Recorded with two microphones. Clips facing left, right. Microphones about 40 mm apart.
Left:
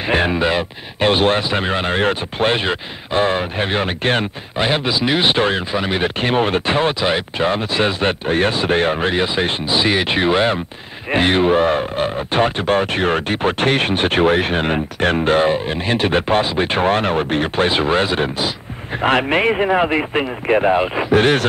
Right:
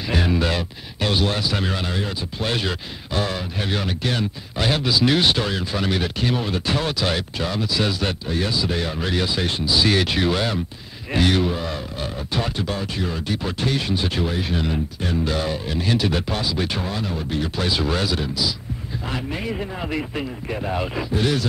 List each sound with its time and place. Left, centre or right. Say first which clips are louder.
0.1 s speech: left 5 dB; left
4.6 s speech: left 3 dB; left
6.0 s speech: left 7 dB; left
19.0 s speech: left 13 dB; left
20.7 s speech: left 8 dB; left
21.1 s speech: left 9 dB; left